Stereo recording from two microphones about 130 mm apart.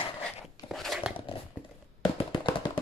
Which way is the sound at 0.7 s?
Centre (ahead or behind).